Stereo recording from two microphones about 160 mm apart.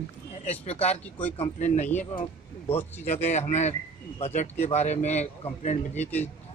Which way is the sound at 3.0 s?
45° left (ahead or behind).